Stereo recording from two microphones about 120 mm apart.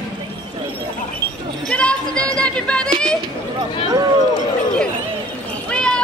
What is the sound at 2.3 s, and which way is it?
Music, 10° left (ahead or behind).